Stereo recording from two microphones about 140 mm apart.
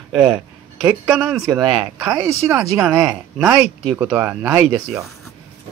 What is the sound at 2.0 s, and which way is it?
Speech, 20° right (ahead or behind).